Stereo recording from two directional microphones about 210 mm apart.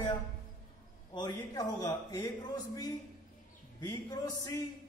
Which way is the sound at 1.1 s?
20° left (ahead or behind).